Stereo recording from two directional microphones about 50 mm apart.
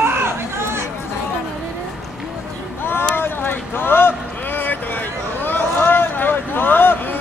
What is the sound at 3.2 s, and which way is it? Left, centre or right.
Vehicle, left.